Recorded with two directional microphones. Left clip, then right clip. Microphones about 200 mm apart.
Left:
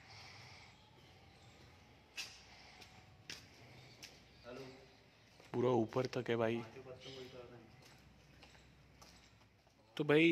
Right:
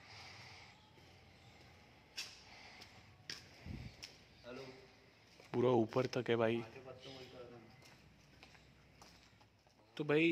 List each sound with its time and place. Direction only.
0.1 s snort: 10° right (ahead or behind)
3.3 s a sound: 25° right (ahead or behind)
5.5 s speech: 10° right (ahead or behind)
9.9 s speech: 15° left (ahead or behind)